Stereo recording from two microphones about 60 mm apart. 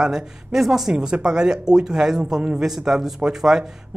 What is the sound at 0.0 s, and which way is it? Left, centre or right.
Speech, centre.